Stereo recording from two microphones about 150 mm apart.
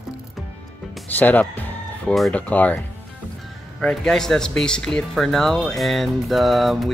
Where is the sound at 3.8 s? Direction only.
5° left (ahead or behind).